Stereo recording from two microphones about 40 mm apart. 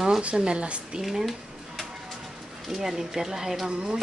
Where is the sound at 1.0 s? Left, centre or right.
Centre.